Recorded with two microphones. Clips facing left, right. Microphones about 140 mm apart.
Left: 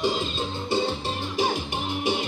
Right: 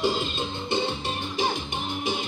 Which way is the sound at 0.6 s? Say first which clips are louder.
Left 2 dB; 5° left (ahead or behind).